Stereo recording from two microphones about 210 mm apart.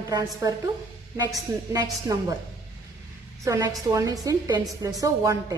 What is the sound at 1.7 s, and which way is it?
Speech, 15° right (ahead or behind).